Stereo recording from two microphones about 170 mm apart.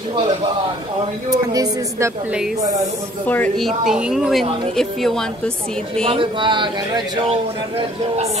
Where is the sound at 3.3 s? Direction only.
10° left (ahead or behind).